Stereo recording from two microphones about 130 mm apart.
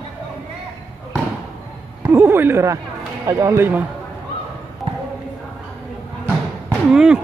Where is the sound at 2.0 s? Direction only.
15° right (ahead or behind).